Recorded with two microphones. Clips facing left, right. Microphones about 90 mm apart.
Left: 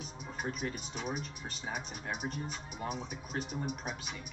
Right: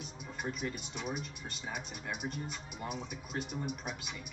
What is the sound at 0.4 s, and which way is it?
Speech, 40° left (ahead or behind).